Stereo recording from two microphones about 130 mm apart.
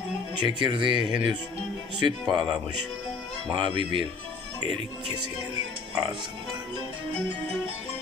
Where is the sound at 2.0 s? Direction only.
35° right (ahead or behind).